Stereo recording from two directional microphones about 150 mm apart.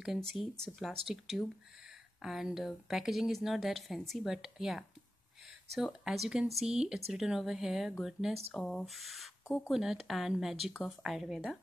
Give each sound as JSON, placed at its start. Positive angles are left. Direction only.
{"t": 0.3, "sound": "speech", "side_deg": 0}